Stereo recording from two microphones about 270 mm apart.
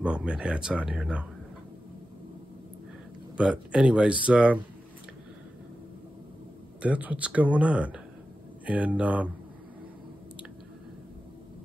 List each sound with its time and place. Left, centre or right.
0.0 s speech: centre
3.3 s speech: centre
6.8 s speech: centre